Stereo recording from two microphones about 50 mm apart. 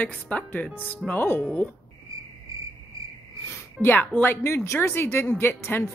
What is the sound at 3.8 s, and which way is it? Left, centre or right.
Speech, left.